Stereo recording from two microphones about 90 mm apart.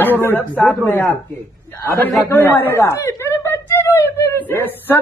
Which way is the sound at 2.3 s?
25° left (ahead or behind).